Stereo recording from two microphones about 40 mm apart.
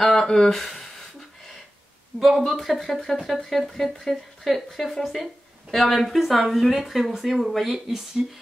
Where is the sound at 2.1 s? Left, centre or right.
Centre.